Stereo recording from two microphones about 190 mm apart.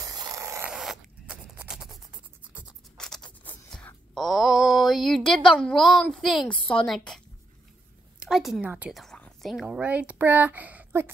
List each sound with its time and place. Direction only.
0.0 s zipper: 20° right (ahead or behind)
0.7 s zipper: 5° right (ahead or behind)
3.0 s a sound: 5° left (ahead or behind)
8.2 s a woman's voice: centre (ahead or behind)